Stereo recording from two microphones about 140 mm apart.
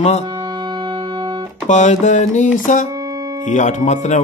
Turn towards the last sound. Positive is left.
turn(degrees=60)  # may be behind; listen again after turning